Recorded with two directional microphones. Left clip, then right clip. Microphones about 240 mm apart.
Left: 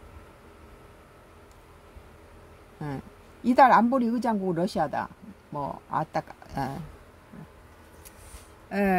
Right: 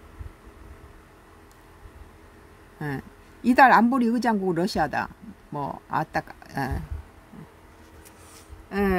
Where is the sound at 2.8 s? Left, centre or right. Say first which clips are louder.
Right 4 dB; centre.